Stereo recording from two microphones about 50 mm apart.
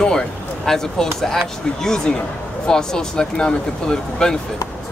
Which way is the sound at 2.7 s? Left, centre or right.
Centre.